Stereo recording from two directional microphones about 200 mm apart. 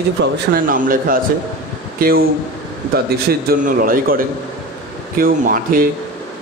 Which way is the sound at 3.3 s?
45° right (ahead or behind).